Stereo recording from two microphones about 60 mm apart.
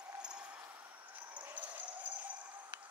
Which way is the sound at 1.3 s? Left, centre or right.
Right.